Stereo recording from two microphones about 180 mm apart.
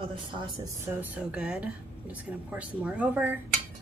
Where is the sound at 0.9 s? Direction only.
5° right (ahead or behind).